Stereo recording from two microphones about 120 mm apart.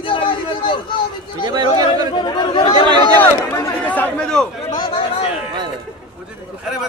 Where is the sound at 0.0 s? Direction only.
45° left (ahead or behind).